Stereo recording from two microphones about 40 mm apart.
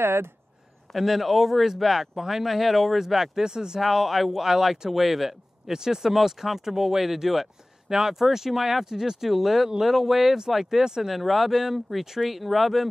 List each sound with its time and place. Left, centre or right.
0.0 s speech: right
0.9 s speech: centre
3.8 s speech: centre
11.1 s speech: centre